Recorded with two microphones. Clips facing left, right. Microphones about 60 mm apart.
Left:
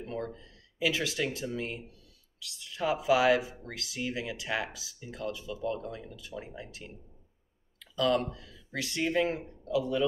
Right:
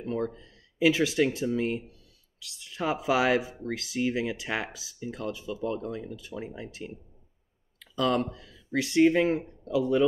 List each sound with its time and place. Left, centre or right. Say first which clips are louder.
0.7 s speech: right 7 dB; right
7.8 s a sound: right 1 dB; right
8.7 s speech: right 8 dB; right